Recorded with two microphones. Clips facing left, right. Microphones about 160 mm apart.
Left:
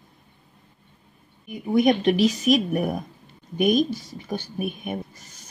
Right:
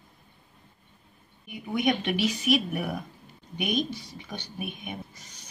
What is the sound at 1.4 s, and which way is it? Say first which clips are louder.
A woman's voice: left 7 dB; 40° left (ahead or behind).